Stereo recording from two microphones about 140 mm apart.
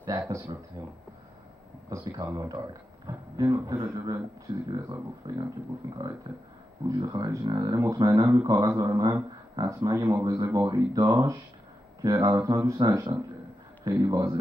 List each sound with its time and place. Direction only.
0.2 s speech: 20° right (ahead or behind)
1.9 s speech: 25° right (ahead or behind)